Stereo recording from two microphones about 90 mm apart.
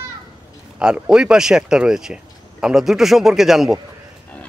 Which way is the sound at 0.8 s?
10° right (ahead or behind).